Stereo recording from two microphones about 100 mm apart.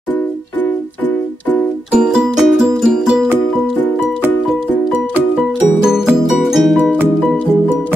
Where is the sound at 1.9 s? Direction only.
5° right (ahead or behind).